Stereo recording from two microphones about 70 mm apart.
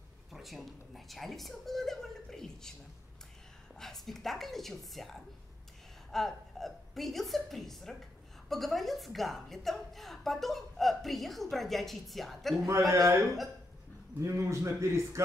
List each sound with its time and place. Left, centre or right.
0.3 s a woman's voice: centre
3.8 s a woman's voice: centre
12.6 s a man's voice: right
14.2 s a man's voice: right